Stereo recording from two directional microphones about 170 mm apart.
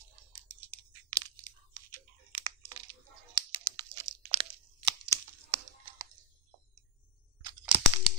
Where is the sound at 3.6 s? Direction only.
20° right (ahead or behind).